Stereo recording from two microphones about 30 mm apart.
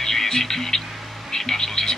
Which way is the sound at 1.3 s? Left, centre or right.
Centre.